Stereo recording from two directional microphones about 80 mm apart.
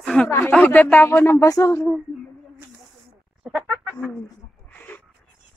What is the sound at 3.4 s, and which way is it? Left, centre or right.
Chicken, centre.